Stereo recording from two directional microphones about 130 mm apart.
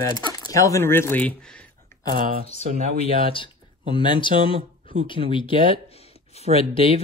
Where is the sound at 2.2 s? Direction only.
90° right.